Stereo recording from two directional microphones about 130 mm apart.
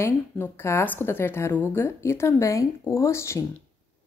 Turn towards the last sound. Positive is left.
turn(degrees=20)  # may be behind; listen again after turning